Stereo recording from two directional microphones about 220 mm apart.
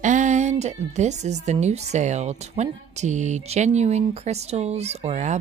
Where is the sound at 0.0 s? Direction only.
35° right (ahead or behind).